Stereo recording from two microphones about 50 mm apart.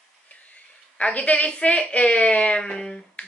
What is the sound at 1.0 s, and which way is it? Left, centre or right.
A woman's voice, left.